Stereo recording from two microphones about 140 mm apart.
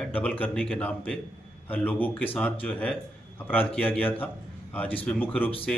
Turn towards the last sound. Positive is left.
turn(degrees=10)  # may be behind; listen again after turning